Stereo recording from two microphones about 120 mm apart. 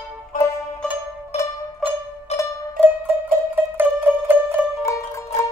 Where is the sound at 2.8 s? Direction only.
15° right (ahead or behind).